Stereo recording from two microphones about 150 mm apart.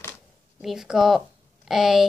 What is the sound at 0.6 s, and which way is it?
A woman's voice, 5° right (ahead or behind).